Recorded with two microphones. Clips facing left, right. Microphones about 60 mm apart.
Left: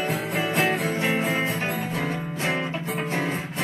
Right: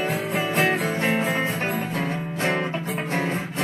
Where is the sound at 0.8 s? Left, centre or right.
Right.